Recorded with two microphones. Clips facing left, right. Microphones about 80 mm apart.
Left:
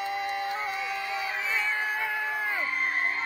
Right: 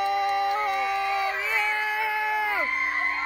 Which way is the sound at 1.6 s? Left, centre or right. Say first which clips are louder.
Right 3 dB; right.